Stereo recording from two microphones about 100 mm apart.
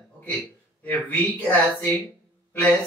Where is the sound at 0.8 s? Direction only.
15° left (ahead or behind).